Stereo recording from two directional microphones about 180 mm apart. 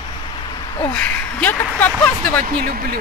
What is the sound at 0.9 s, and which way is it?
Speech, 10° left (ahead or behind).